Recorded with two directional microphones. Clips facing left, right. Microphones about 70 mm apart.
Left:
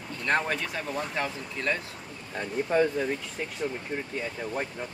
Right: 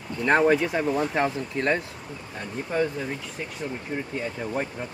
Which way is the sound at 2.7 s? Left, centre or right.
Centre.